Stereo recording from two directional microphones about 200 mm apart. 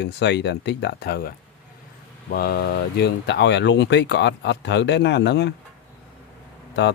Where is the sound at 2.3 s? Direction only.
50° left (ahead or behind).